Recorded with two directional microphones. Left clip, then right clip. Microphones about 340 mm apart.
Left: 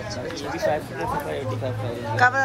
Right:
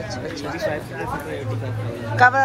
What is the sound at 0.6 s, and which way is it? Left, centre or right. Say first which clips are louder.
Speech: left 2 dB; left.